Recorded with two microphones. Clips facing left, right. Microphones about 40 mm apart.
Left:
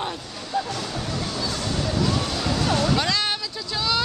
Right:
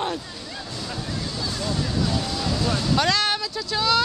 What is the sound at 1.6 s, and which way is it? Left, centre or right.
Vehicle, left.